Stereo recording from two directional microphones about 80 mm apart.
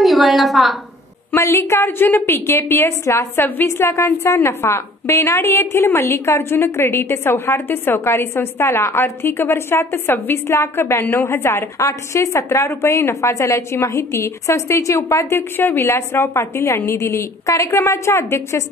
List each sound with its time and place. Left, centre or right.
0.0 s a woman's voice: centre
1.3 s a woman's voice: left